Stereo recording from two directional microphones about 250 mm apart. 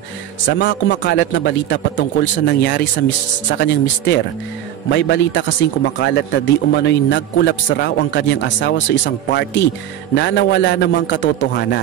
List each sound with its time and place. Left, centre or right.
0.5 s a man's voice: left